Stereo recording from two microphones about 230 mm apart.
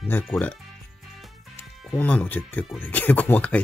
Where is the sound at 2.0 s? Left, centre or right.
Centre.